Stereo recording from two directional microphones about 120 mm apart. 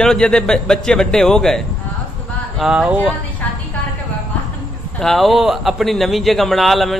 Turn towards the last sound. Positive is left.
turn(degrees=0)  # may be behind; listen again after turning